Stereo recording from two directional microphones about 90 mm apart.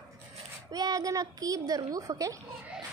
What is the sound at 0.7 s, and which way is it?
A child's voice, 45° right (ahead or behind).